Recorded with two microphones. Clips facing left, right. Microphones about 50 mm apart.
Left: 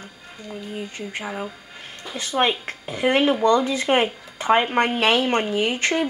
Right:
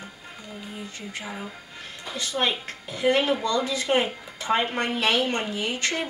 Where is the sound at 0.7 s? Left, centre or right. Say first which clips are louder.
Left 6 dB; left.